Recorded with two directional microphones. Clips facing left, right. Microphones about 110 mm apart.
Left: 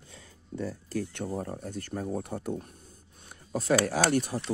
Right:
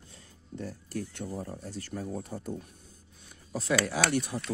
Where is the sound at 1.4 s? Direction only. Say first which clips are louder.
Left 3 dB; 55° left (ahead or behind).